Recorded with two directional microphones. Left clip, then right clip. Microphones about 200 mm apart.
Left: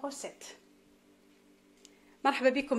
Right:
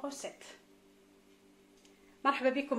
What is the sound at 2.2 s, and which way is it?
Speech, 55° left (ahead or behind).